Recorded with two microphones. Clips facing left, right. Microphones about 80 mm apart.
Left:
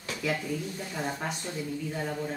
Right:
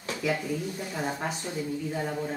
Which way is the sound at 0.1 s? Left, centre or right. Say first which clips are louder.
Right 2 dB; centre.